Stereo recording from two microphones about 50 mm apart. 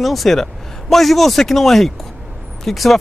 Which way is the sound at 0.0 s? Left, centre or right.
Centre.